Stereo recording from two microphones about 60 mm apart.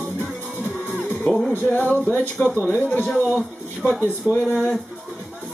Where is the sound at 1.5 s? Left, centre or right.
Left.